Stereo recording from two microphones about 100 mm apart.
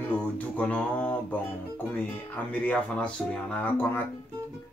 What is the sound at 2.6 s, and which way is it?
Speech, 10° left (ahead or behind).